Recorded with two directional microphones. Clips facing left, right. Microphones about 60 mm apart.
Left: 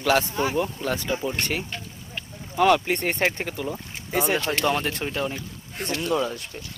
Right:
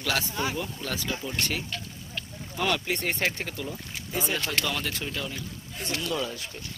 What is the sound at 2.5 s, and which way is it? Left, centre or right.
Speech, centre.